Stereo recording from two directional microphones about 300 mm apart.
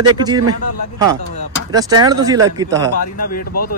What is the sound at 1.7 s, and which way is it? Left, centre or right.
Speech, centre.